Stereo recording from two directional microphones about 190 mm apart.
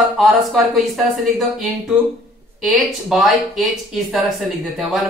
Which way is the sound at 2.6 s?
Centre (ahead or behind).